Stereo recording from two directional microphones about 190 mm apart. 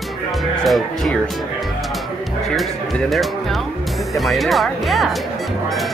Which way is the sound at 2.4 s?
Centre (ahead or behind).